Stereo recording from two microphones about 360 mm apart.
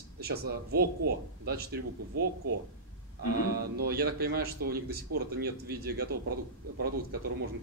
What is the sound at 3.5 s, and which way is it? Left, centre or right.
Speech, right.